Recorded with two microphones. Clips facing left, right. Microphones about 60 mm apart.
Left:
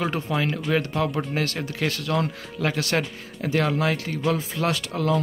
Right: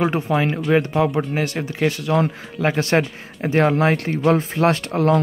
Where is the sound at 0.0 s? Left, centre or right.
Right.